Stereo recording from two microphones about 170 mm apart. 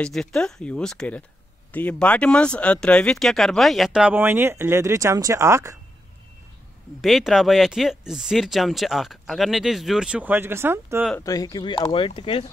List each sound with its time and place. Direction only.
0.0 s speech: 5° left (ahead or behind); by 5.8 s 20° right (ahead or behind)
7.0 s speech: centre (ahead or behind)
11.1 s speech: 20° left (ahead or behind)